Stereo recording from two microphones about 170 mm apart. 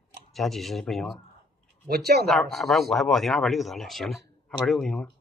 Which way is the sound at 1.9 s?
70° right (ahead or behind).